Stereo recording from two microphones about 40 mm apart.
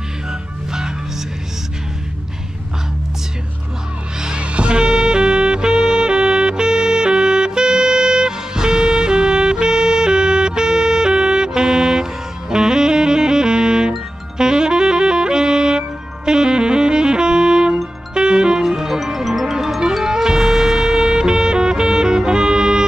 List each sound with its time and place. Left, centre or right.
0.3 s music: centre
4.4 s music: right
14.4 s saxophone: centre
18.1 s music: centre